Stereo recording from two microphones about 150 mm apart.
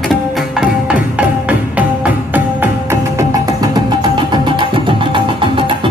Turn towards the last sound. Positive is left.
turn(degrees=-35)  # may be behind; listen again after turning